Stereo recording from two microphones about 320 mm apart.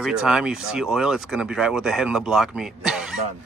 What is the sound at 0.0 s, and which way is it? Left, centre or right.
Speech, centre.